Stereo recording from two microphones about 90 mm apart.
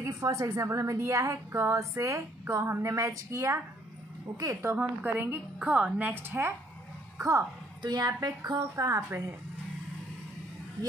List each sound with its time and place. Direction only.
0.0 s a woman's voice: 40° right (ahead or behind)
4.7 s a woman's voice: 20° right (ahead or behind)
7.2 s speech: 35° right (ahead or behind)
7.8 s a woman's voice: 55° right (ahead or behind)